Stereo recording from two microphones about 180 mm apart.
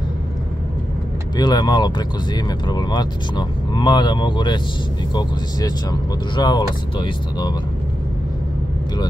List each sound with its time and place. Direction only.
1.3 s speech: 25° left (ahead or behind)